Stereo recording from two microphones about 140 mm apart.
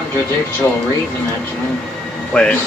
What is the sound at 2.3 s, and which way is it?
Speech, 10° left (ahead or behind).